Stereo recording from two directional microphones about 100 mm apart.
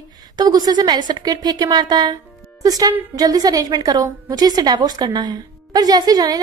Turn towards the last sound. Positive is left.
turn(degrees=-40)  # may be behind; listen again after turning